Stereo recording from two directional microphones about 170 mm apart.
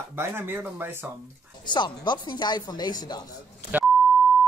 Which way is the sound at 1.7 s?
25° left (ahead or behind).